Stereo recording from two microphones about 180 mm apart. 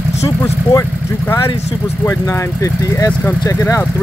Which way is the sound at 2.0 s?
15° left (ahead or behind).